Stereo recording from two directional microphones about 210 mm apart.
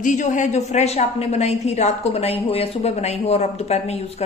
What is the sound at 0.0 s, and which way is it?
A woman's voice, 35° left (ahead or behind).